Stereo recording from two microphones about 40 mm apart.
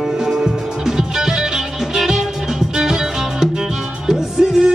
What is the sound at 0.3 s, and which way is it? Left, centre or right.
Music, centre.